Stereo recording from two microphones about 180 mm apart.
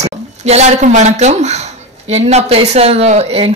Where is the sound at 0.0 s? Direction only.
40° right (ahead or behind).